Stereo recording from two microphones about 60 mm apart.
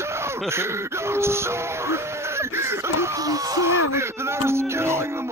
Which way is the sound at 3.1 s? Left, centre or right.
Right.